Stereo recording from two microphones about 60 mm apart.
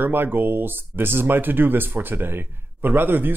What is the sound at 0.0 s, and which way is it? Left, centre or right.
Speech, right.